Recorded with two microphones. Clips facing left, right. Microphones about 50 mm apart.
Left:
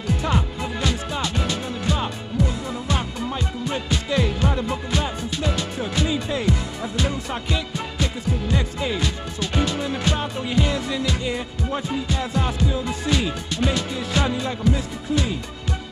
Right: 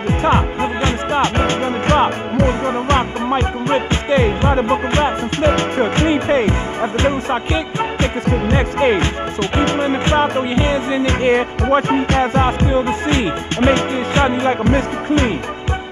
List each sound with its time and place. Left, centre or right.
0.0 s music: right
10.5 s music: right
11.2 s music: right